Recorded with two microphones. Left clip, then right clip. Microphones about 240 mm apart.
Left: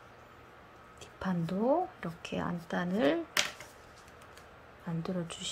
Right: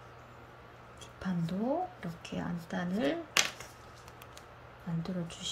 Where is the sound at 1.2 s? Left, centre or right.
Centre.